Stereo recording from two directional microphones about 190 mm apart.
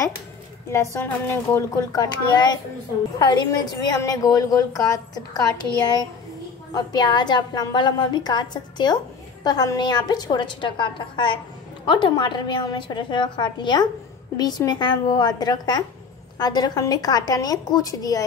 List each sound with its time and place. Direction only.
0.7 s a woman's voice: 15° left (ahead or behind)
6.7 s a woman's voice: 20° left (ahead or behind)